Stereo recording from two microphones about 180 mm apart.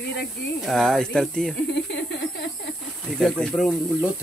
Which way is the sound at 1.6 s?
70° left (ahead or behind).